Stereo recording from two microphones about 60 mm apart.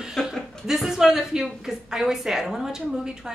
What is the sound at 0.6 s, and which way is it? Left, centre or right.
A woman's voice, centre.